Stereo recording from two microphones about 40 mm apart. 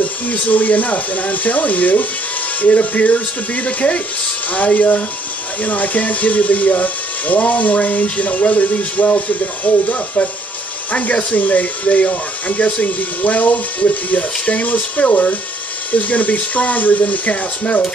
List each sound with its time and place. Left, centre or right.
0.0 s speech: left